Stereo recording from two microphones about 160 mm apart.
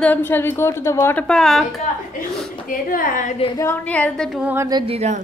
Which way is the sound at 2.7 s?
60° left (ahead or behind).